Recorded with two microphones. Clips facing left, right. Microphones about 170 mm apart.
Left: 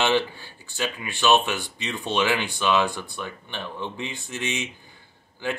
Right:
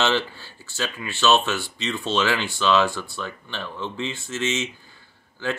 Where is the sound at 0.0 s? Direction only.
15° left (ahead or behind).